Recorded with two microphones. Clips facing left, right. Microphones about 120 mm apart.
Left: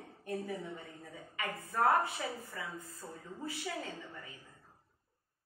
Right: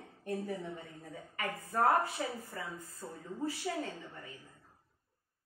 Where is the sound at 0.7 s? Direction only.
35° right (ahead or behind).